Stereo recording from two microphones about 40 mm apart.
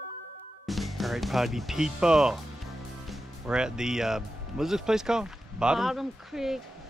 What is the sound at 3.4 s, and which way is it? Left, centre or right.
Speech, centre.